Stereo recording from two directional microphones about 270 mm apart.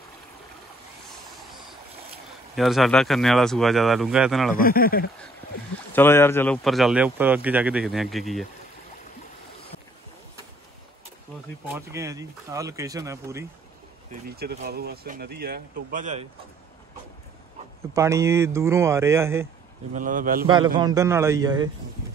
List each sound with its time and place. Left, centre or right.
1.5 s stream: centre
2.5 s speech: centre
4.6 s speech: left
5.9 s speech: centre
11.6 s speech: centre
14.3 s speech: right
17.9 s speech: centre
19.9 s speech: right
20.4 s speech: centre